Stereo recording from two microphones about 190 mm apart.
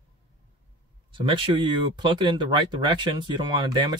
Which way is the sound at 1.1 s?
25° right (ahead or behind).